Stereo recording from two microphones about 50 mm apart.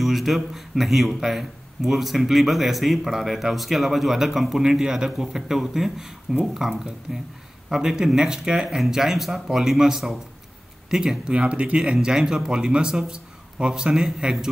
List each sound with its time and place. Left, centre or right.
0.0 s speech: centre